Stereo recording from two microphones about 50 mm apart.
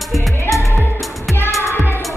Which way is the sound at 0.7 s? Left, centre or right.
Left.